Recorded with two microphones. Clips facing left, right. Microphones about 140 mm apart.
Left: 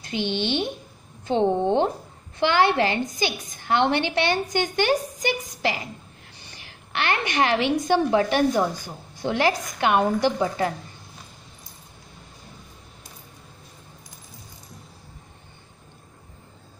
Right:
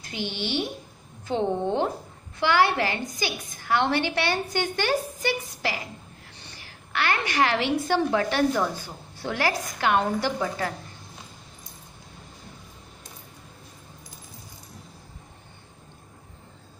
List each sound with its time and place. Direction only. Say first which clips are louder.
0.0 s a woman's voice: left 6 dB; 20° left (ahead or behind)